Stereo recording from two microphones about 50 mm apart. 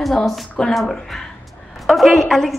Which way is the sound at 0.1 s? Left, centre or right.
Centre.